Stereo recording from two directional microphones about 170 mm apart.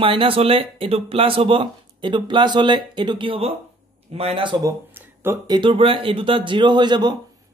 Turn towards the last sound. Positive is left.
turn(degrees=-25)  # may be behind; listen again after turning